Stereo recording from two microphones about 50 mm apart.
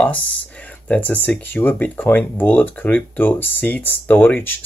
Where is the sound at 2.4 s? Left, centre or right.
Left.